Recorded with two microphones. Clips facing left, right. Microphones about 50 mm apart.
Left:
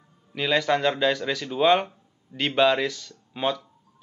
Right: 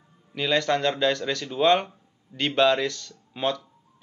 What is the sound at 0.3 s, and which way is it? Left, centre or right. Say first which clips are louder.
Speech: left 1 dB; centre.